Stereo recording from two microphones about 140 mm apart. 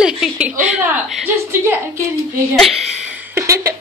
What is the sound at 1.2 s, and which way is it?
Speech, 15° right (ahead or behind).